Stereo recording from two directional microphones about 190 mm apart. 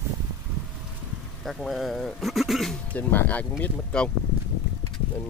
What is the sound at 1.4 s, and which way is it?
Speech, centre (ahead or behind).